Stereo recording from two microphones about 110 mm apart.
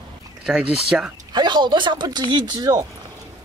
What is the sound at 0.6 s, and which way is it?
Speech, 55° right (ahead or behind).